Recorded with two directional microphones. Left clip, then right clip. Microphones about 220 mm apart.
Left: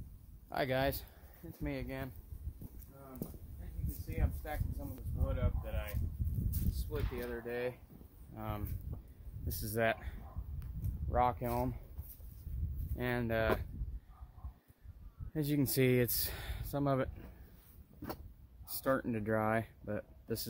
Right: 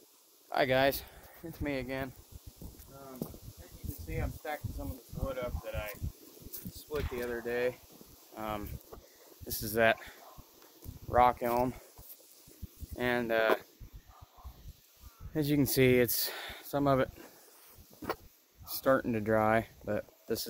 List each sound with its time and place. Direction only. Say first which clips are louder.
0.5 s speech: right 7 dB; 15° right (ahead or behind)
1.4 s speech: right 6 dB; 40° right (ahead or behind)
2.6 s a sound: right 4 dB; 10° right (ahead or behind)
4.1 s speech: right 5 dB; 5° right (ahead or behind)
7.2 s speech: right 6 dB; 15° right (ahead or behind)
8.4 s speech: right 6 dB; 25° right (ahead or behind)
9.5 s speech: right 7 dB; 15° right (ahead or behind)
11.1 s speech: right 7 dB; 30° right (ahead or behind)
12.9 s speech: right 6 dB; 5° right (ahead or behind)
15.3 s speech: right 5 dB; centre (ahead or behind)
18.8 s speech: right 6 dB; centre (ahead or behind)